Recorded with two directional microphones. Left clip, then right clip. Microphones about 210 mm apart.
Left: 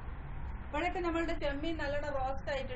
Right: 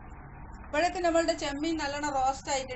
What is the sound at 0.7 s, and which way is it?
A woman's voice, 50° right (ahead or behind).